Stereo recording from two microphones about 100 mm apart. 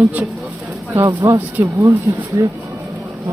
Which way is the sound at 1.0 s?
30° right (ahead or behind).